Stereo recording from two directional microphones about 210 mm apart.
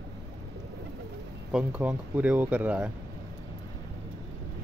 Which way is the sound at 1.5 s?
5° right (ahead or behind).